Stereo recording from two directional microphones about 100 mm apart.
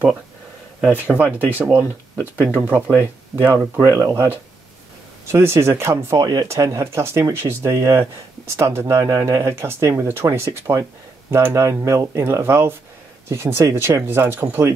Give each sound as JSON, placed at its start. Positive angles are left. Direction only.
{"t": 0.9, "sound": "speech", "side_deg": -15}